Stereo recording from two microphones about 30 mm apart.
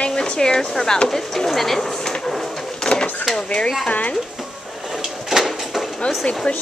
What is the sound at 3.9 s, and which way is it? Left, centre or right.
Speech, left.